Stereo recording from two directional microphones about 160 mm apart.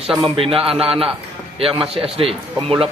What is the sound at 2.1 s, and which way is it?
Speech, 35° right (ahead or behind).